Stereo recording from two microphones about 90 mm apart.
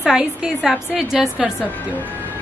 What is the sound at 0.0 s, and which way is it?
A woman's voice, 10° right (ahead or behind).